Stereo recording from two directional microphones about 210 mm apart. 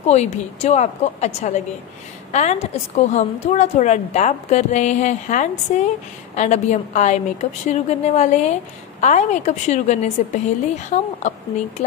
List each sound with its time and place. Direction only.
0.0 s a woman's voice: 30° left (ahead or behind)